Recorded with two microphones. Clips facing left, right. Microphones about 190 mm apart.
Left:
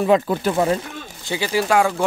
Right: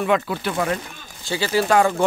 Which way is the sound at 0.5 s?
25° left (ahead or behind).